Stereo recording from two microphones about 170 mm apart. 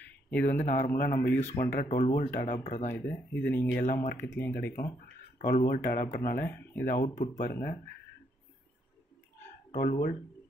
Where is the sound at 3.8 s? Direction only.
45° left (ahead or behind).